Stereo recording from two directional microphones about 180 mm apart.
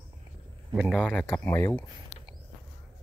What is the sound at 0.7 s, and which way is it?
A man's voice, centre (ahead or behind).